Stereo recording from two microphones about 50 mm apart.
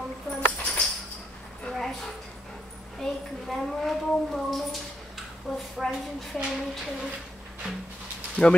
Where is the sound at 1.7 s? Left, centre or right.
Centre.